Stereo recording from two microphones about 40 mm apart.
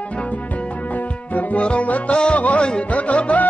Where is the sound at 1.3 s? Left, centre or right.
Left.